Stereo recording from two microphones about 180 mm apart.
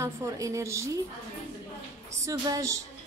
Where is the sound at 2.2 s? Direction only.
15° right (ahead or behind).